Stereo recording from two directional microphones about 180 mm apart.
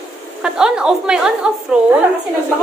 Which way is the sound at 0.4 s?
5° right (ahead or behind).